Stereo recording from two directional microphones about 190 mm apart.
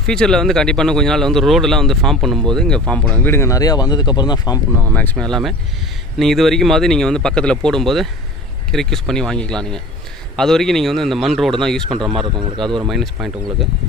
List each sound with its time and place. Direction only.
0.0 s speech: 5° left (ahead or behind); by 4.6 s 20° left (ahead or behind)
4.8 s speech: 10° left (ahead or behind)
12.0 s speech: 25° right (ahead or behind)
12.8 s speech: centre (ahead or behind)